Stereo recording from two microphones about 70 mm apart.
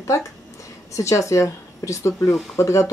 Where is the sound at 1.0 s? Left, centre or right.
Left.